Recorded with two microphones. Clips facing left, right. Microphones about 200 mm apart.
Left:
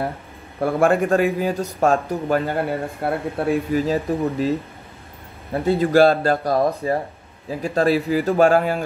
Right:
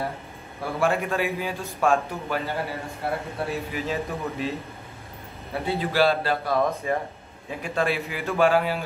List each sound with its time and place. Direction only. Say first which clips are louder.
0.6 s a man's voice: left 7 dB; 50° left (ahead or behind)
3.8 s a man's voice: left 8 dB; 40° left (ahead or behind)
5.5 s a man's voice: left 9 dB; 45° left (ahead or behind)